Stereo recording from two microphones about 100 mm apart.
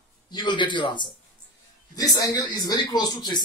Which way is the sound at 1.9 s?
35° left (ahead or behind).